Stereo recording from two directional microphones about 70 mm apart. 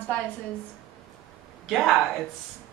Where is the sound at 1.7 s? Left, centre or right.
Centre.